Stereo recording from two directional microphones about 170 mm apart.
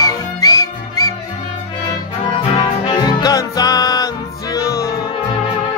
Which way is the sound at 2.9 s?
25° left (ahead or behind).